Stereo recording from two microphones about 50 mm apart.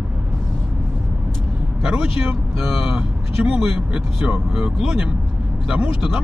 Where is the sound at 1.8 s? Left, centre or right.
Centre.